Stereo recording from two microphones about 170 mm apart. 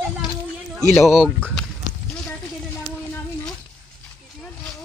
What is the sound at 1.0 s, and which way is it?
Speech, 5° right (ahead or behind).